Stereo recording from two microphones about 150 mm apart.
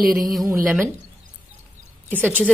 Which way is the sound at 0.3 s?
Centre (ahead or behind).